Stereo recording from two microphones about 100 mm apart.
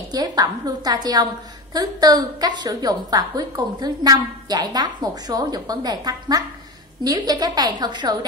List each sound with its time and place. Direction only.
0.1 s a woman's voice: 40° right (ahead or behind)